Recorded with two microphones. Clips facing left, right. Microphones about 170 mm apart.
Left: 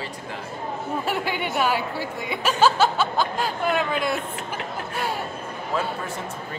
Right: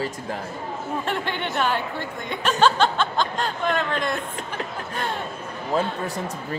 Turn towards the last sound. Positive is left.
turn(degrees=-35)  # may be behind; listen again after turning